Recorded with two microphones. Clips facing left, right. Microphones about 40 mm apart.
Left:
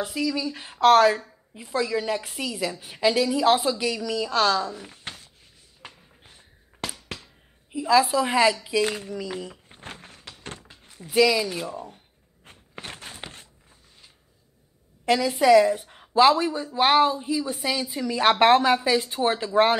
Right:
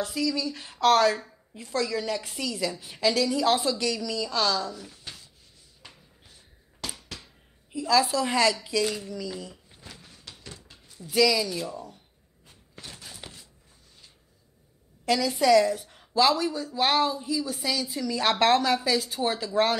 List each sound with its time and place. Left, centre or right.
0.0 s a woman's voice: centre
4.3 s a woman's voice: left
5.0 s a sound: left
7.7 s a woman's voice: left
9.7 s drawer open or close: left
10.4 s a sound: left
10.9 s a woman's voice: left
12.4 s a sound: left
15.0 s a woman's voice: left